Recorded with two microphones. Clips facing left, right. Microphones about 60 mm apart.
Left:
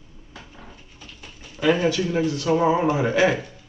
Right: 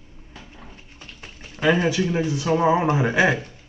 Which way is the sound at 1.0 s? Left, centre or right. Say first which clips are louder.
Right 2 dB; right.